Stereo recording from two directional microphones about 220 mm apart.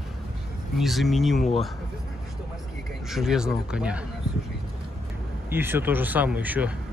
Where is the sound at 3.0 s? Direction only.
Centre (ahead or behind).